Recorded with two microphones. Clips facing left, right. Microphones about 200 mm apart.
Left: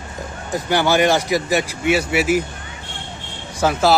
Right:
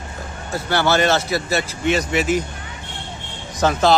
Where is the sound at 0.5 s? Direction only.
15° left (ahead or behind).